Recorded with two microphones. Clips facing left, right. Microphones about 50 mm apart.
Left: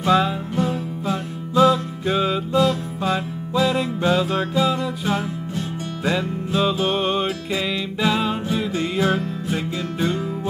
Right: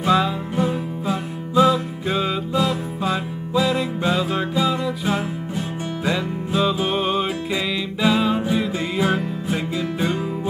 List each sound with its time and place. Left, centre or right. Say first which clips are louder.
0.6 s music: right 2 dB; centre
9.9 s music: left 2 dB; centre